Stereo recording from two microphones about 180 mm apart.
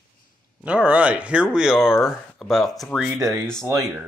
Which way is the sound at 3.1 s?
15° right (ahead or behind).